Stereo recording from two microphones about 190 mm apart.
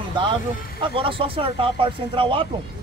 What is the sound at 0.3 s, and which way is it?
A man's voice, 25° right (ahead or behind).